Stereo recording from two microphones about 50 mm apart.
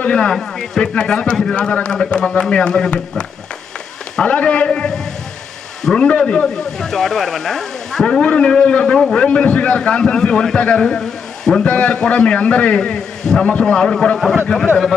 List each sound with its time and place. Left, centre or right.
0.0 s a man's voice: centre
6.4 s speech: centre
11.6 s a man's voice: left; by 14.3 s centre